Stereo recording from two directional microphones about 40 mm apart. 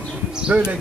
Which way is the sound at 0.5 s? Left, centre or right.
Right.